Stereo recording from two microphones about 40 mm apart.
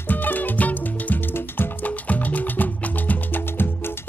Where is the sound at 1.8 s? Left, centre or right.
Left.